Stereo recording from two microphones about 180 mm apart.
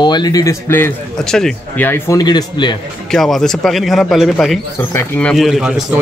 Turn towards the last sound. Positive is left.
turn(degrees=-5)  # may be behind; listen again after turning